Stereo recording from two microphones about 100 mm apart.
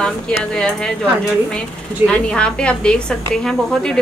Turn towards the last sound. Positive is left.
turn(degrees=5)  # may be behind; listen again after turning